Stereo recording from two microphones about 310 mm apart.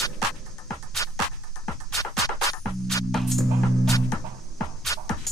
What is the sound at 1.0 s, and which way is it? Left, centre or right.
Music, centre.